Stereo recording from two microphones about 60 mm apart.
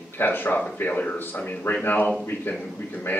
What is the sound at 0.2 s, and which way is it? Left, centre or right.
Speech, left.